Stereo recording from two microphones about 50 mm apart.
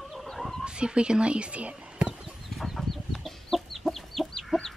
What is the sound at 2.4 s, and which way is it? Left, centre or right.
Chicken, centre.